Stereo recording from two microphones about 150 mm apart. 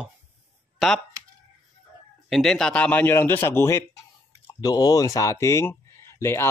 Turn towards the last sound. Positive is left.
turn(degrees=15)  # may be behind; listen again after turning